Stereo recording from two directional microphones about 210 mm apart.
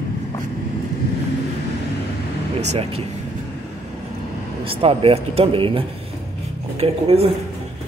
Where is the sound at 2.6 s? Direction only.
30° right (ahead or behind).